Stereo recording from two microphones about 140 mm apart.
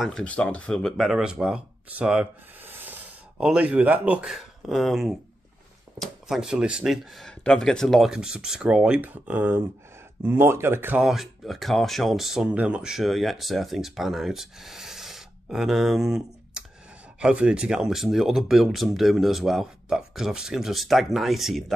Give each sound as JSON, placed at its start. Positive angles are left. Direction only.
{"t": 0.0, "sound": "speech", "side_deg": 5}
{"t": 11.1, "sound": "speech", "side_deg": 0}